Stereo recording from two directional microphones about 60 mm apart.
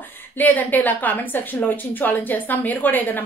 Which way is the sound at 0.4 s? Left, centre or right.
Left.